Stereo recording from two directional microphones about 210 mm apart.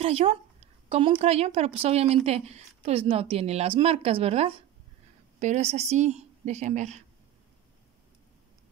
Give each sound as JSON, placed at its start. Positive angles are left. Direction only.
{"t": 0.0, "sound": "a woman's voice", "side_deg": -30}